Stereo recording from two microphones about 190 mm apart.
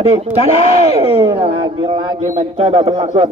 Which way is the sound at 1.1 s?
25° right (ahead or behind).